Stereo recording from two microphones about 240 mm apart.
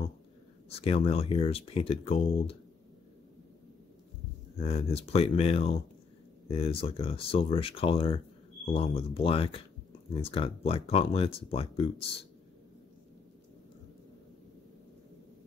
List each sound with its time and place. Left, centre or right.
0.7 s speech: left
4.6 s speech: left